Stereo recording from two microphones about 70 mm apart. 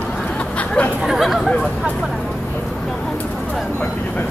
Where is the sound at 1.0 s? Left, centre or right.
Centre.